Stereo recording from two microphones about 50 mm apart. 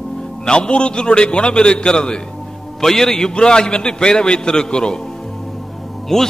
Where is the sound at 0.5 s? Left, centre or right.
Left.